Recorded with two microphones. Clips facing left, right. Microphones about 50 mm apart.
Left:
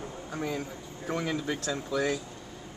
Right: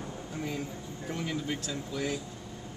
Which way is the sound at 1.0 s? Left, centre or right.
Left.